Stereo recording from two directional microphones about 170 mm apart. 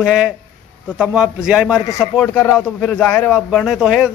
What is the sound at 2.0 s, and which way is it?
A man's voice, 10° left (ahead or behind).